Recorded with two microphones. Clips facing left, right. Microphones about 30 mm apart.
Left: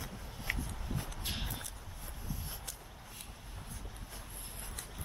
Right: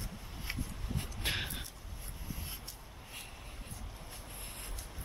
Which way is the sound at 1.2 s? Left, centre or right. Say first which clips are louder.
Right 9 dB; right.